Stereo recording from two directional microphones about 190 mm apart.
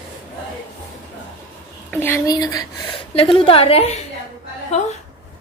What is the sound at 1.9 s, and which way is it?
A woman's voice, 10° left (ahead or behind).